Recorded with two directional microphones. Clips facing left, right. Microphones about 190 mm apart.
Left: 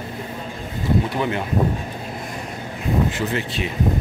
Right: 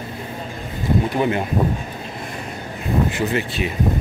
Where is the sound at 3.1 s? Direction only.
10° right (ahead or behind).